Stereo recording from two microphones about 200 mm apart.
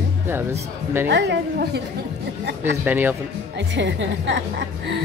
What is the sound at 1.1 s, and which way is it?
Speech, 60° right (ahead or behind).